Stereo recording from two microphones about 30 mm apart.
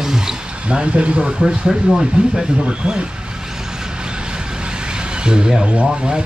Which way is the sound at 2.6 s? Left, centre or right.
Right.